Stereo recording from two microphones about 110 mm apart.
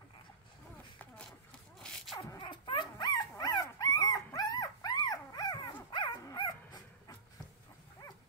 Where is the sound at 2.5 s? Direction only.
45° left (ahead or behind).